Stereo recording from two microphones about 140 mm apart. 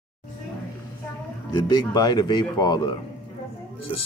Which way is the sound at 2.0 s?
30° left (ahead or behind).